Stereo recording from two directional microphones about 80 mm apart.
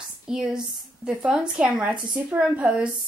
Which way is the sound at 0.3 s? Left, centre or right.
Centre.